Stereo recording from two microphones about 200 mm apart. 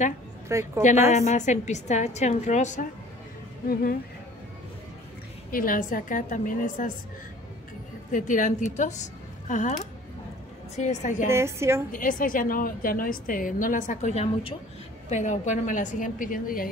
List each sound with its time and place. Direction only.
0.5 s a woman's voice: 15° right (ahead or behind)
1.1 s a woman's voice: 35° left (ahead or behind)
5.5 s a woman's voice: 45° left (ahead or behind)
8.1 s a woman's voice: 40° left (ahead or behind)
11.2 s a woman's voice: 15° right (ahead or behind)
11.9 s a woman's voice: 45° left (ahead or behind)